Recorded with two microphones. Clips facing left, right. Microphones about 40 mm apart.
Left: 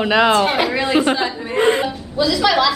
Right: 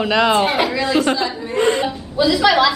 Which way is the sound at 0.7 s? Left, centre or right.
Left.